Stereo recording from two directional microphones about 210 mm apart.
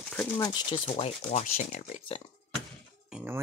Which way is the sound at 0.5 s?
25° left (ahead or behind).